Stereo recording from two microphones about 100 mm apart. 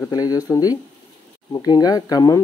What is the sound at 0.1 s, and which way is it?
Speech, 40° left (ahead or behind).